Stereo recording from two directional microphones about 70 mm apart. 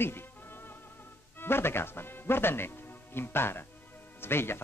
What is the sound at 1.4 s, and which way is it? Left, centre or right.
A man's voice, left.